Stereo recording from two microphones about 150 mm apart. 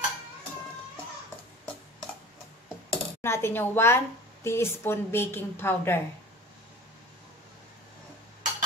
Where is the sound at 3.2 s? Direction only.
15° left (ahead or behind).